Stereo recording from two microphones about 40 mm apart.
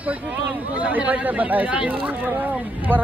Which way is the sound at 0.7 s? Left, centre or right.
Right.